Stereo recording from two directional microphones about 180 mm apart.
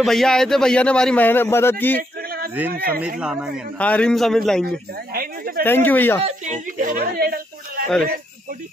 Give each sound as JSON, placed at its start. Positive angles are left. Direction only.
{"t": 0.0, "sound": "speech", "side_deg": 0}
{"t": 2.2, "sound": "a sound", "side_deg": -60}
{"t": 2.7, "sound": "speech", "side_deg": -55}
{"t": 3.2, "sound": "a man's voice", "side_deg": -5}
{"t": 3.7, "sound": "a man's voice", "side_deg": 5}
{"t": 5.1, "sound": "speech", "side_deg": -55}
{"t": 5.6, "sound": "speech", "side_deg": 10}
{"t": 6.2, "sound": "speech", "side_deg": -40}